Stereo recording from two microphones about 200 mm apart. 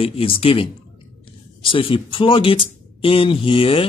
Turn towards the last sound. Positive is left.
turn(degrees=25)  # may be behind; listen again after turning